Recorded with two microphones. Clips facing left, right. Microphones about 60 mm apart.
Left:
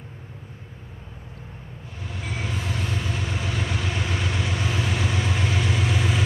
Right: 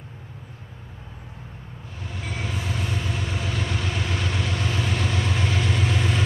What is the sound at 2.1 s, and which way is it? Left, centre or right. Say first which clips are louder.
Train: even; centre.